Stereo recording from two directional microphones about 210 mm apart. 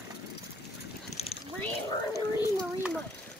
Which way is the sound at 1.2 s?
30° left (ahead or behind).